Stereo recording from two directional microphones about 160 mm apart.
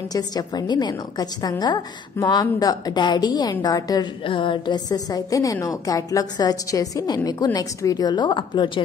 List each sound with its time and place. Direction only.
0.1 s a woman's voice: 25° left (ahead or behind)